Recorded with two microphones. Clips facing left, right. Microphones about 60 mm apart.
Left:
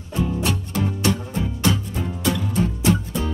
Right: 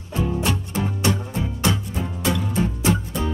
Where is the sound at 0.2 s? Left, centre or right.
Centre.